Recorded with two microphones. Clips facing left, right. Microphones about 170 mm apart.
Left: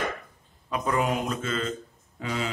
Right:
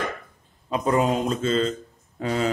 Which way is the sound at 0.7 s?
25° right (ahead or behind).